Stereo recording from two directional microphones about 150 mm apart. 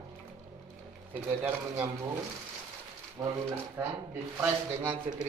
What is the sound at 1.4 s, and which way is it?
Speech, 15° right (ahead or behind).